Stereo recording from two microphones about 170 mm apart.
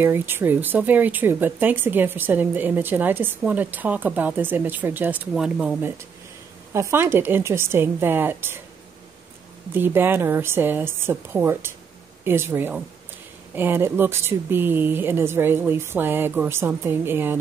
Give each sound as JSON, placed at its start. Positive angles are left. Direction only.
{"t": 0.0, "sound": "speech", "side_deg": -15}
{"t": 9.8, "sound": "speech", "side_deg": -10}